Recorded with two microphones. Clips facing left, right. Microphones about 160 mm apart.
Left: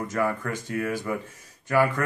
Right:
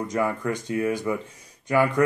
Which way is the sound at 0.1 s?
20° right (ahead or behind).